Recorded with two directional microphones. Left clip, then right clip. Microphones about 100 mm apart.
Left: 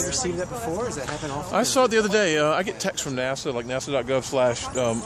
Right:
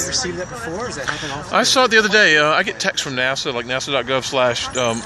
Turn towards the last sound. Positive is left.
turn(degrees=5)  # may be behind; listen again after turning